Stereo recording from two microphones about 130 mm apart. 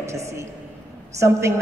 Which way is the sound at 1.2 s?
20° right (ahead or behind).